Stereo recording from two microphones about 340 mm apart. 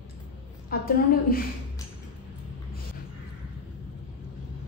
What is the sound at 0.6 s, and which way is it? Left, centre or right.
Speech, left.